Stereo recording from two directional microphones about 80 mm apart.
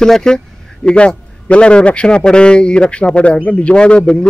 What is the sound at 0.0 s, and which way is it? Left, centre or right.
A man's voice, centre.